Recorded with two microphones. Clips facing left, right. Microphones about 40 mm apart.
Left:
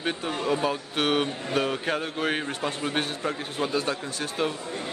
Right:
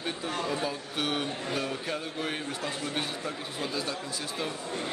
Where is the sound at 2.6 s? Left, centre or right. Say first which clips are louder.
Left 5 dB; left.